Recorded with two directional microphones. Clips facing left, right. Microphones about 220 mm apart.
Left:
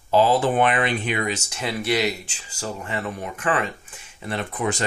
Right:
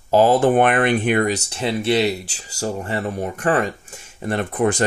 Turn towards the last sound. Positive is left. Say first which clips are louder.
# right 6 dB
turn(degrees=-50)  # may be behind; listen again after turning